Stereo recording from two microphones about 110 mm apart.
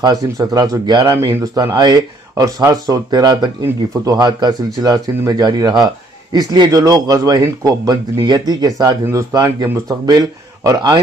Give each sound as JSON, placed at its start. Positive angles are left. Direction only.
{"t": 0.0, "sound": "speech", "side_deg": -35}